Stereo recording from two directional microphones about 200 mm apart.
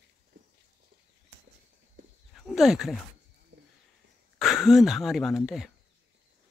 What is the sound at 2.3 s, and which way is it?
Speech, centre (ahead or behind).